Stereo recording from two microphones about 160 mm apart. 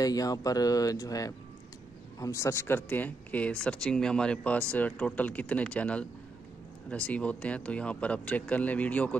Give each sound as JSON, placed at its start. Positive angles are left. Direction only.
{"t": 0.0, "sound": "speech", "side_deg": 20}